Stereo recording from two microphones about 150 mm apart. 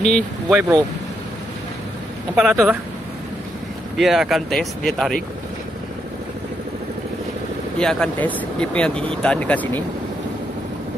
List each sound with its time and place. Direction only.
0.0 s speech: centre (ahead or behind)
2.5 s speech: 15° right (ahead or behind)
3.9 s speech: centre (ahead or behind)
7.8 s speech: 5° left (ahead or behind)